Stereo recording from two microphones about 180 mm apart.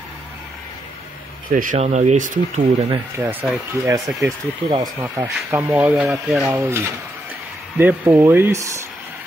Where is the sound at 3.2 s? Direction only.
10° right (ahead or behind).